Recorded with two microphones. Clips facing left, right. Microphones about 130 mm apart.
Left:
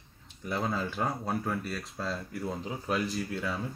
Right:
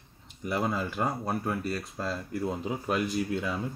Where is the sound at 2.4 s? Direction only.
15° right (ahead or behind).